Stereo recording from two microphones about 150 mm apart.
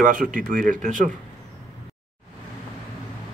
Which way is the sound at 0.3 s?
65° right (ahead or behind).